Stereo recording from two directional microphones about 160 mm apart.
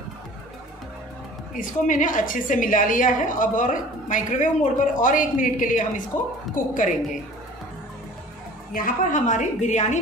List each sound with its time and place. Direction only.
1.5 s a woman's voice: 55° left (ahead or behind)
8.7 s a woman's voice: 55° left (ahead or behind)